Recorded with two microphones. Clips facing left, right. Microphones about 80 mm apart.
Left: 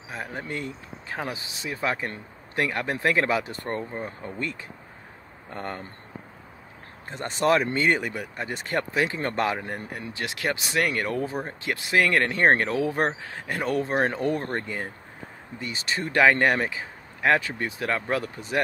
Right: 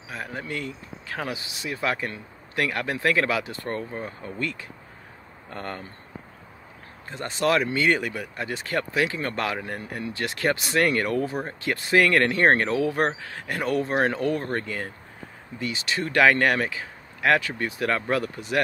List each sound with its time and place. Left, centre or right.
0.2 s speech: left
3.3 s speech: left
7.1 s speech: left; by 11.1 s centre
11.1 s speech: centre
14.2 s speech: left
15.6 s speech: left
16.0 s speech: centre